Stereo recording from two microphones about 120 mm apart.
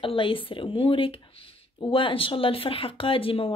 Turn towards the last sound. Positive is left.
turn(degrees=50)  # may be behind; listen again after turning